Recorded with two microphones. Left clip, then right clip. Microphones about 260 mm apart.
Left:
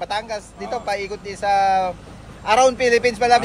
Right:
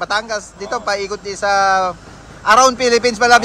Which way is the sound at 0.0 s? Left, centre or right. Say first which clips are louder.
Right 6 dB; centre.